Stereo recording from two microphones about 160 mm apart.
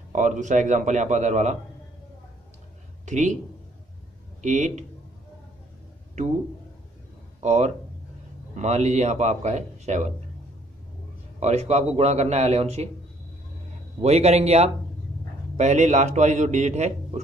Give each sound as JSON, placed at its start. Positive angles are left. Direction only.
{"t": 0.1, "sound": "a man's voice", "side_deg": -50}
{"t": 3.1, "sound": "speech", "side_deg": -45}
{"t": 4.4, "sound": "speech", "side_deg": -50}
{"t": 7.3, "sound": "a man's voice", "side_deg": -45}
{"t": 11.3, "sound": "a man's voice", "side_deg": -45}
{"t": 14.0, "sound": "a man's voice", "side_deg": -40}